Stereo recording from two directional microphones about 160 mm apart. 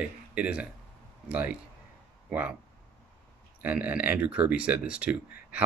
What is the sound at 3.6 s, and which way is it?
Speech, 10° right (ahead or behind).